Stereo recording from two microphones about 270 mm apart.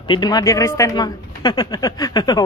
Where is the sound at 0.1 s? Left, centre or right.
Centre.